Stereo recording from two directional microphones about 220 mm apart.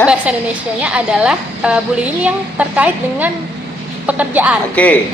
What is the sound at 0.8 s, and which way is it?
A woman's voice, 5° right (ahead or behind).